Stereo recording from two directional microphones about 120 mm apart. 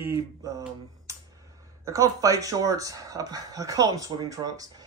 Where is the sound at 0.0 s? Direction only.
25° right (ahead or behind).